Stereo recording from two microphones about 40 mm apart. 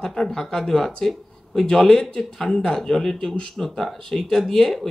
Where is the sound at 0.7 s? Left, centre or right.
Centre.